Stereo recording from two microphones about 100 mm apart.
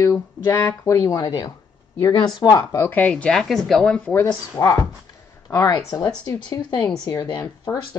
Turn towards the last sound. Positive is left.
turn(degrees=50)  # may be behind; listen again after turning